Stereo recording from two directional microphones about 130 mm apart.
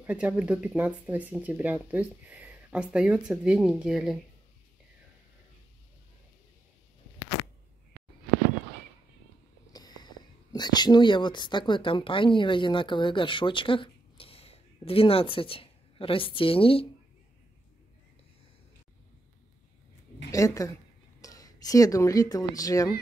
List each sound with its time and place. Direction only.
0.0 s speech: 10° right (ahead or behind)
9.7 s speech: 30° left (ahead or behind)
20.2 s a woman's voice: 25° left (ahead or behind)